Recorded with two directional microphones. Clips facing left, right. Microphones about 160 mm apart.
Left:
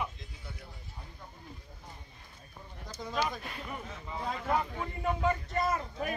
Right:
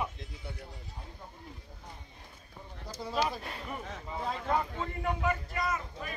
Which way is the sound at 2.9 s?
10° right (ahead or behind).